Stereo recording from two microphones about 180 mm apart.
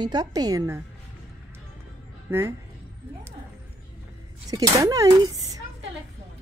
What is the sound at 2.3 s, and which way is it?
Speech, 15° right (ahead or behind).